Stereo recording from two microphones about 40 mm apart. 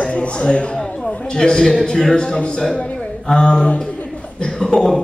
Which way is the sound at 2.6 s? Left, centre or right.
Centre.